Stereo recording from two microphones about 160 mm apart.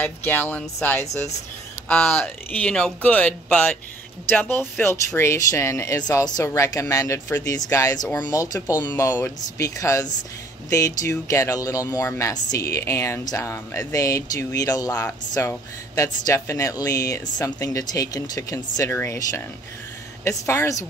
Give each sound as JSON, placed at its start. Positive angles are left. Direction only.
{"t": 0.0, "sound": "speech", "side_deg": 10}